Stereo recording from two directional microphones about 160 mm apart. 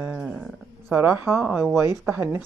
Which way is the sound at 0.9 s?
15° right (ahead or behind).